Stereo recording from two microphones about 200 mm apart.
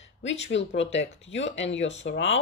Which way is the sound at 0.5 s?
65° left (ahead or behind).